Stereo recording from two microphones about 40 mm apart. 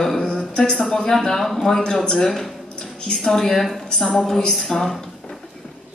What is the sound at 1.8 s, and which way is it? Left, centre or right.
A woman's voice, centre.